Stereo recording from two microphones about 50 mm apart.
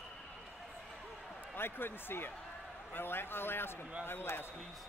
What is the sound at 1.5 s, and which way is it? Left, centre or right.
A man's voice, left.